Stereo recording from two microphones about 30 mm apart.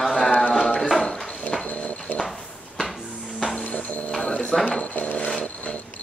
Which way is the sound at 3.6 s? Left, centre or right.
Left.